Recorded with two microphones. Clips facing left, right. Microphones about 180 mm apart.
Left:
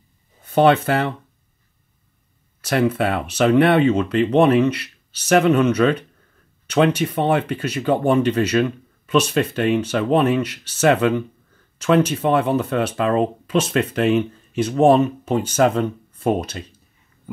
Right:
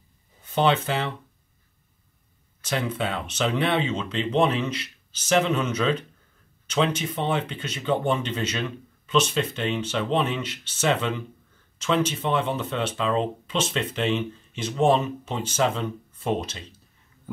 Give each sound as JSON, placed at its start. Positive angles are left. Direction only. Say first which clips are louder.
{"t": 0.6, "sound": "speech", "louder": "left 7 dB", "side_deg": 60}
{"t": 2.6, "sound": "speech", "louder": "left 8 dB", "side_deg": 65}